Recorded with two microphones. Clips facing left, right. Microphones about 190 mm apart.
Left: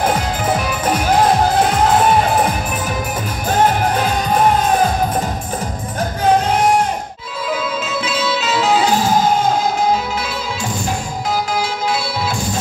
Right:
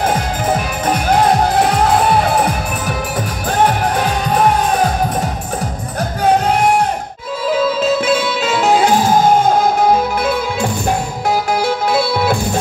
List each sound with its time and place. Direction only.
8.0 s music: 50° right (ahead or behind)